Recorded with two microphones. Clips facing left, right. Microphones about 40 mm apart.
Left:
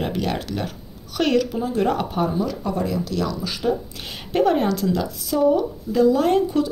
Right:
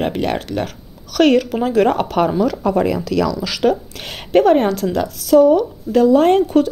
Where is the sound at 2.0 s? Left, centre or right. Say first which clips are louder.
Right 6 dB; right.